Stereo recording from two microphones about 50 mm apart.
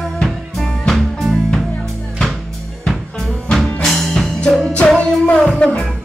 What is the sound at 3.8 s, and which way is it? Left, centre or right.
Music, centre.